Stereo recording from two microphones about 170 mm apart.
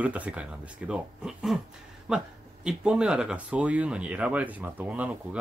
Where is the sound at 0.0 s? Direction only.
10° right (ahead or behind).